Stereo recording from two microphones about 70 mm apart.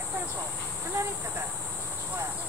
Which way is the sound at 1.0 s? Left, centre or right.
Right.